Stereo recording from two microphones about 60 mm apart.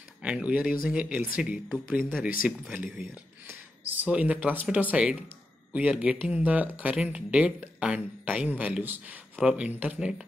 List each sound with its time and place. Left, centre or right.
0.2 s a woman's voice: right
1.9 s a woman's voice: right
2.4 s speech: centre
3.4 s a sound: right
4.1 s a woman's voice: right
9.4 s speech: centre